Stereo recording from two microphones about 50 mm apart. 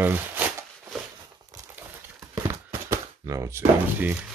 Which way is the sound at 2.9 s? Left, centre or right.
Right.